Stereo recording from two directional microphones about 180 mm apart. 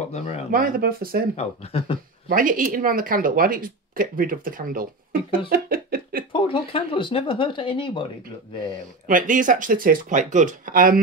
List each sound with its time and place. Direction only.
0.1 s speech: 35° left (ahead or behind)
0.5 s speech: 50° right (ahead or behind)
1.3 s speech: 35° left (ahead or behind)
2.2 s speech: 50° right (ahead or behind)
5.5 s a sound: 55° right (ahead or behind)
6.3 s speech: 30° left (ahead or behind)
9.0 s speech: 45° right (ahead or behind)